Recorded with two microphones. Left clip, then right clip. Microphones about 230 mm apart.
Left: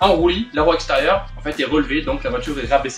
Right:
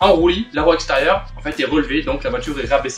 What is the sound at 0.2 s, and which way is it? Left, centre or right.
Speech, centre.